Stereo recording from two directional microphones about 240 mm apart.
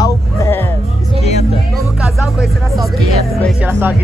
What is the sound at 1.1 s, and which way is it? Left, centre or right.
Music, left.